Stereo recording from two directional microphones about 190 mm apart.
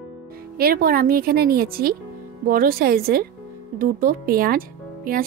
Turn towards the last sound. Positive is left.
turn(degrees=-50)  # may be behind; listen again after turning